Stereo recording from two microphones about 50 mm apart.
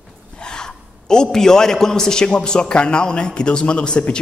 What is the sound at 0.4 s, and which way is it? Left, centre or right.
A man's voice, centre.